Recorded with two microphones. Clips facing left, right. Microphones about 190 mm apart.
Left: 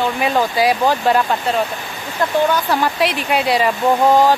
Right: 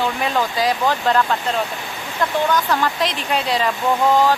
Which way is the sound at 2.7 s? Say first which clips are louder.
Left 3 dB; 15° left (ahead or behind).